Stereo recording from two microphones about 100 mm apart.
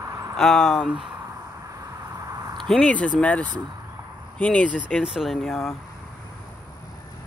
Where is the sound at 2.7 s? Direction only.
10° left (ahead or behind).